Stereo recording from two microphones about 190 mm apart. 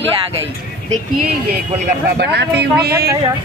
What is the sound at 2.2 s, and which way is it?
Speech, 60° right (ahead or behind).